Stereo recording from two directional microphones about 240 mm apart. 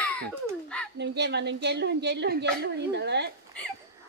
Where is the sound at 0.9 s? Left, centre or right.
Right.